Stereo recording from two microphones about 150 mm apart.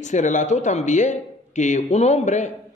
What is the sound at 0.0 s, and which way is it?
Speech, 55° left (ahead or behind).